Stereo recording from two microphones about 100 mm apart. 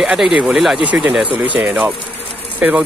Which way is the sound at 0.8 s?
15° right (ahead or behind).